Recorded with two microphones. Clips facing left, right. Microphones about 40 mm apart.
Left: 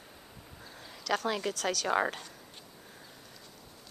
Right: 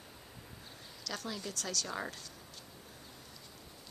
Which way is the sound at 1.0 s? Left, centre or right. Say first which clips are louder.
Left 10 dB; left.